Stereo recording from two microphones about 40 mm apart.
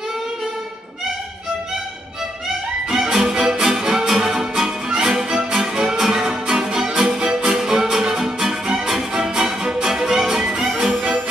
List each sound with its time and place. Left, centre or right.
2.9 s music: centre